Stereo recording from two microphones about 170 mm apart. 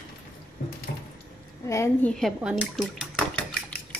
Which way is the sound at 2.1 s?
Centre (ahead or behind).